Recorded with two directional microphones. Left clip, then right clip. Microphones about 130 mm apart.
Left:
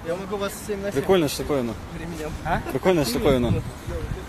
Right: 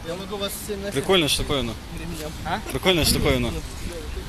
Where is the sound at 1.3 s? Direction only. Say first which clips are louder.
Right 1 dB; 10° left (ahead or behind).